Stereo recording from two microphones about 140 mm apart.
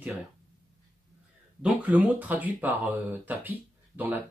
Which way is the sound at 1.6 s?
10° right (ahead or behind).